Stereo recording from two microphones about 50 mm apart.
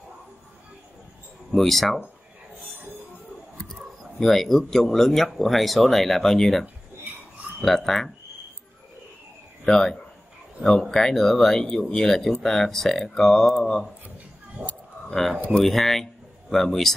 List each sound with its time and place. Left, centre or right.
1.7 s speech: centre
3.6 s speech: centre
7.6 s speech: centre
9.7 s speech: centre
14.6 s a sound: right
15.0 s speech: centre